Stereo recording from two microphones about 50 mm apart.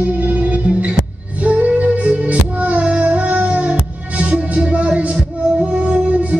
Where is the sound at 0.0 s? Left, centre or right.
Right.